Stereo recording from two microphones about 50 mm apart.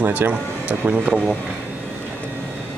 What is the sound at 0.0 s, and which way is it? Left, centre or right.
Speech, right.